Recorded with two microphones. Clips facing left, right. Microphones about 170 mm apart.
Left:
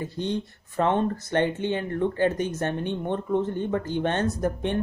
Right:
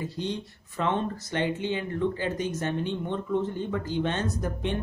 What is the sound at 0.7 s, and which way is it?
Speech, 50° left (ahead or behind).